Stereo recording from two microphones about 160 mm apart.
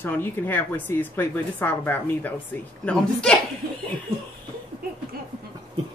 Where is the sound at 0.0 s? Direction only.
15° left (ahead or behind).